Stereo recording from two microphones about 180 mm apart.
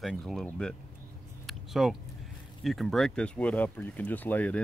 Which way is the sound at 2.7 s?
Centre (ahead or behind).